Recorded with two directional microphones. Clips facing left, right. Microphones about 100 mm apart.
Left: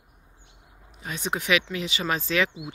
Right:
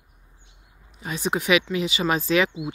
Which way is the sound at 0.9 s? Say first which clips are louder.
Right 4 dB; 5° right (ahead or behind).